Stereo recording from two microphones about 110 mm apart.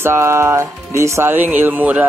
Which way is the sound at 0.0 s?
25° right (ahead or behind).